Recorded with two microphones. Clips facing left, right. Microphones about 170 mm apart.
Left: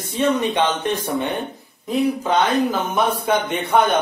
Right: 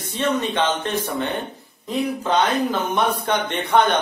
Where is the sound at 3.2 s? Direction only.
5° left (ahead or behind).